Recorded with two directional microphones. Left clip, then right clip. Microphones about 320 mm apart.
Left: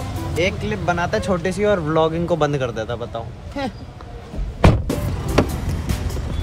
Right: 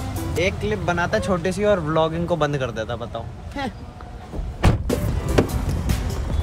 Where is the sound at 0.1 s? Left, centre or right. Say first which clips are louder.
Left 2 dB; centre.